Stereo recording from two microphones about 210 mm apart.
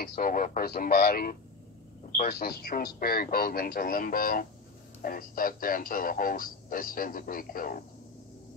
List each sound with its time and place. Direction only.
0.0 s speech: 40° left (ahead or behind)